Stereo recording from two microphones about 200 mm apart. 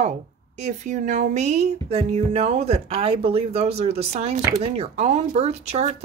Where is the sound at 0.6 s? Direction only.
35° right (ahead or behind).